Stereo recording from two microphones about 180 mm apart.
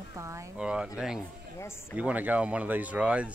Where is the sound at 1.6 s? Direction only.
15° left (ahead or behind).